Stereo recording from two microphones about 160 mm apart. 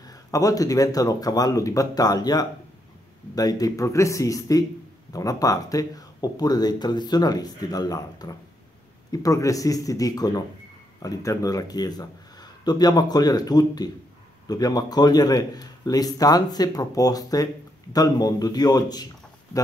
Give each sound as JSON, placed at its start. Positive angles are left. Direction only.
{"t": 0.0, "sound": "speech", "side_deg": 20}